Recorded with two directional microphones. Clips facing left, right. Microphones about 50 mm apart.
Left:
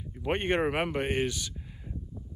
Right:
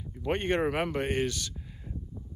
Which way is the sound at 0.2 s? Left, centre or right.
Left.